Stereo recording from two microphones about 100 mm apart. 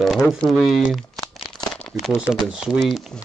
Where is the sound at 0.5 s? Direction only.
Centre (ahead or behind).